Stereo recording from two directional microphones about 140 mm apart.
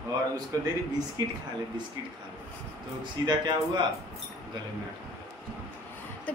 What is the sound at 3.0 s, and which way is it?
Speech, 30° right (ahead or behind).